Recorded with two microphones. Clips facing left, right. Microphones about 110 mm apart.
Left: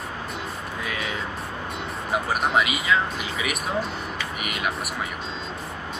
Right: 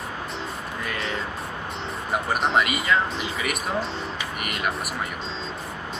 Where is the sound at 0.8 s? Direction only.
5° left (ahead or behind).